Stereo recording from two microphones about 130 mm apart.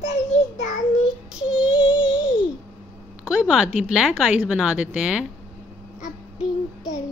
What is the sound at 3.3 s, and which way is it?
Speech, 5° right (ahead or behind).